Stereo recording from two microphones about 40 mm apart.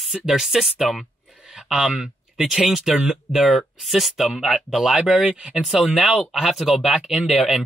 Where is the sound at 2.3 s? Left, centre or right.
Centre.